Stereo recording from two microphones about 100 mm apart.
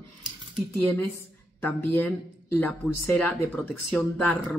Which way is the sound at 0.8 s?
15° left (ahead or behind).